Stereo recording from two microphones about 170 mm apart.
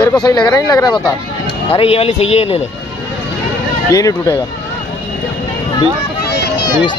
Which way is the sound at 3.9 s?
20° left (ahead or behind).